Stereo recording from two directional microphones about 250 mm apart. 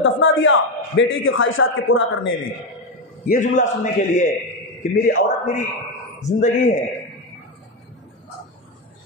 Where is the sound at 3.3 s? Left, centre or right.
Left.